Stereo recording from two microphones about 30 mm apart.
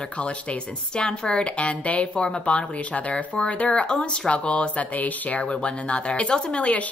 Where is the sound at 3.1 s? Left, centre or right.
Left.